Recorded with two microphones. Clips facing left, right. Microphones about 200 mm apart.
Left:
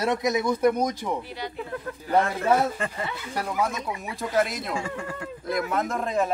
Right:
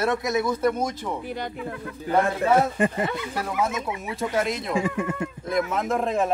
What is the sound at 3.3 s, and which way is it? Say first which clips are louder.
Speech: right 1 dB; centre (ahead or behind).